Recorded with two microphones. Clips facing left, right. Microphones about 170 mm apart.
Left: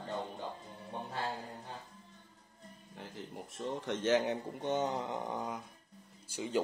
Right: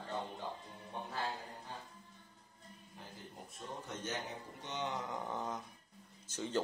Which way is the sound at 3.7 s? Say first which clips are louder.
Left 12 dB; 90° left.